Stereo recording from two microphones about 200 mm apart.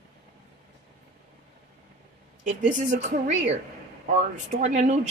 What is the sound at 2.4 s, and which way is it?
Speech, 40° right (ahead or behind).